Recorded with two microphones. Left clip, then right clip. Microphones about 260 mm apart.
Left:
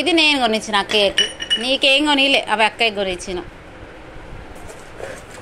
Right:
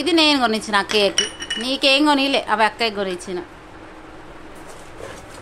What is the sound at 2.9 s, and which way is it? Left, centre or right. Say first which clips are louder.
Speech: left 2 dB; centre.